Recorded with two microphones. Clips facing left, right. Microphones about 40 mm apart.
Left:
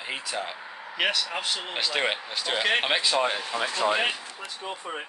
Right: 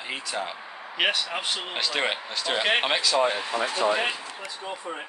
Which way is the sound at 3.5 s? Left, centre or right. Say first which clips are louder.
Right 2 dB; right.